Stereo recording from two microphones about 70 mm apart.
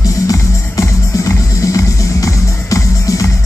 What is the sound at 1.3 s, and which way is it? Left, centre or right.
Music, left.